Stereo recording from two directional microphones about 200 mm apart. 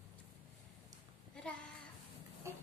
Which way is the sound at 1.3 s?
5° left (ahead or behind).